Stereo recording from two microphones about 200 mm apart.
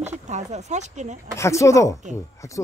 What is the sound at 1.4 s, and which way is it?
Speech, 15° left (ahead or behind).